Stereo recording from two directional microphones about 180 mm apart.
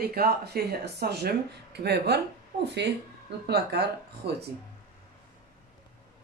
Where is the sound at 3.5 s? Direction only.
65° right (ahead or behind).